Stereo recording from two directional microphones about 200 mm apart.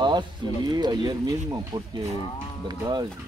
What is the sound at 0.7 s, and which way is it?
Speech, 20° right (ahead or behind).